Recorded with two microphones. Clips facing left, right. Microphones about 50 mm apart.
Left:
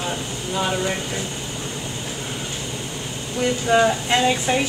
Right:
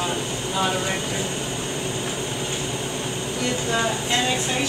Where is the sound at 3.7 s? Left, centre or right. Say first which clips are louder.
Left 9 dB; left.